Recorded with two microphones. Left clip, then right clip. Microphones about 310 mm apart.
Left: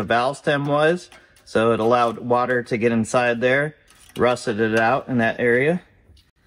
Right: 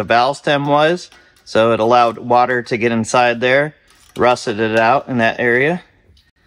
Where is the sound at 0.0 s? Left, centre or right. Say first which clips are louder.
Right 6 dB; right.